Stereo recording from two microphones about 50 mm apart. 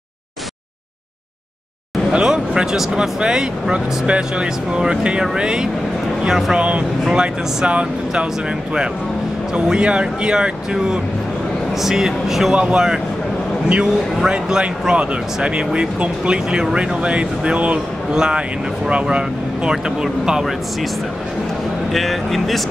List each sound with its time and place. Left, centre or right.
2.1 s speech: centre
7.1 s speech: right
9.5 s speech: centre
12.5 s speech: right
21.9 s speech: centre